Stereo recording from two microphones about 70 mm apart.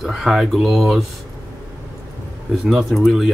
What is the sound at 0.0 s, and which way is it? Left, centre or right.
Speech, centre.